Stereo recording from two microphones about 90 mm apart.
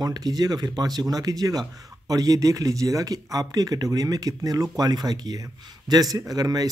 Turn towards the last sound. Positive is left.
turn(degrees=-45)  # may be behind; listen again after turning